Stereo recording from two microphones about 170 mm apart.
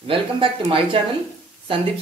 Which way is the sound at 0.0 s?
30° right (ahead or behind).